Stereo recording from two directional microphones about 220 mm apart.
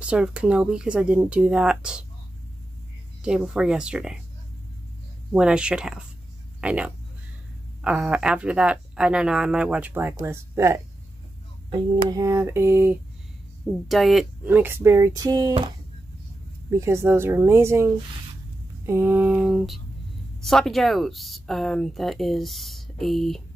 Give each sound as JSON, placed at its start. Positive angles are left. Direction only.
{"t": 0.0, "sound": "speech", "side_deg": -5}
{"t": 3.2, "sound": "speech", "side_deg": -5}
{"t": 5.3, "sound": "speech", "side_deg": -5}
{"t": 16.7, "sound": "speech", "side_deg": -10}